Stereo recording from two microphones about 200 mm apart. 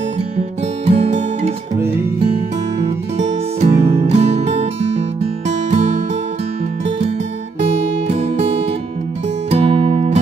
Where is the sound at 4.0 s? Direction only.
35° right (ahead or behind).